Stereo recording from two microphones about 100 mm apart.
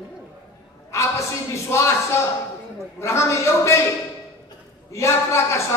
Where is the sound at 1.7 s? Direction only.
25° left (ahead or behind).